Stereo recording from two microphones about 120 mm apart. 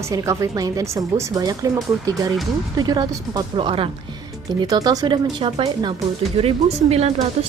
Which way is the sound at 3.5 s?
50° right (ahead or behind).